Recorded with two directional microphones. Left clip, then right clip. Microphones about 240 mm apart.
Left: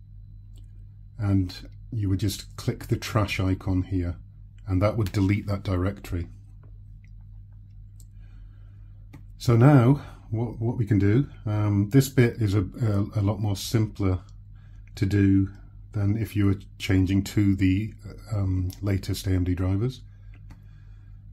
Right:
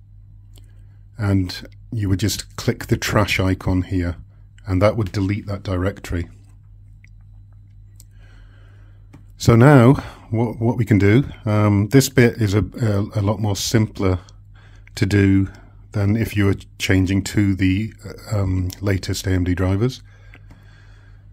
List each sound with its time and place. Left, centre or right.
1.1 s speech: right
5.1 s speech: centre; by 6.3 s right
9.4 s speech: right